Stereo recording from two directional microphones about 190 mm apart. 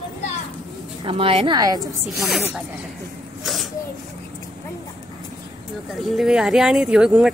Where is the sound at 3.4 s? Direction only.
Centre (ahead or behind).